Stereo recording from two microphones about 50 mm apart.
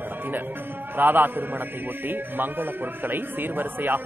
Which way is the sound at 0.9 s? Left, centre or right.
Right.